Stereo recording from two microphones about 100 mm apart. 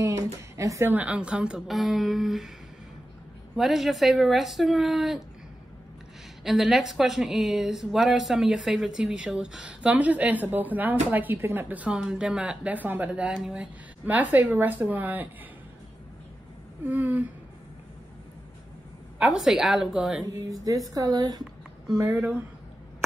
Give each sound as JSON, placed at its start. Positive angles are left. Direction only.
{"t": 0.6, "sound": "speech", "side_deg": -30}
{"t": 0.9, "sound": "a woman's voice", "side_deg": -10}
{"t": 3.5, "sound": "speech", "side_deg": 0}
{"t": 6.4, "sound": "a woman's voice", "side_deg": -5}
{"t": 16.8, "sound": "a woman's voice", "side_deg": -15}
{"t": 19.1, "sound": "speech", "side_deg": -10}
{"t": 20.2, "sound": "speech", "side_deg": -35}